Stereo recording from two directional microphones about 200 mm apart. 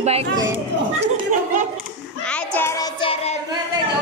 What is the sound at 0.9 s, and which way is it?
Chatter, 40° right (ahead or behind).